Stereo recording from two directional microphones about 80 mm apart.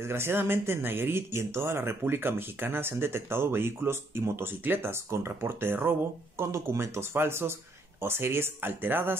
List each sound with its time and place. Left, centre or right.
0.0 s speech: right